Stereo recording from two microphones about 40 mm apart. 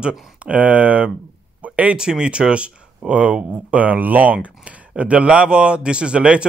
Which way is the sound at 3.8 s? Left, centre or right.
Right.